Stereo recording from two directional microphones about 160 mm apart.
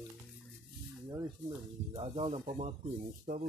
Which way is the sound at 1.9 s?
35° right (ahead or behind).